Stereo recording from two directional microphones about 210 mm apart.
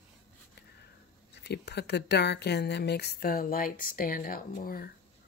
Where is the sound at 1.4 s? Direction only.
55° left (ahead or behind).